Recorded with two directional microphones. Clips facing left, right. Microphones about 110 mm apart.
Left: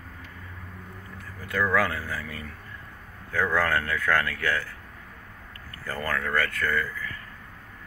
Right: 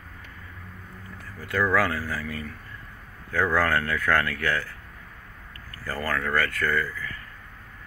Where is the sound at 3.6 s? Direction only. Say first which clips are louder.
Right 1 dB; 20° left (ahead or behind).